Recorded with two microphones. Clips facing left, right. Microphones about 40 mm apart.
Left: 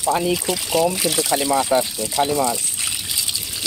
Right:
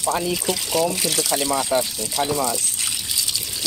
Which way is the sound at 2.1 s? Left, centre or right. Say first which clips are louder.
Left 3 dB; centre.